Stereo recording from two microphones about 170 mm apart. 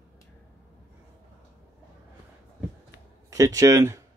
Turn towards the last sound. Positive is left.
turn(degrees=-15)  # may be behind; listen again after turning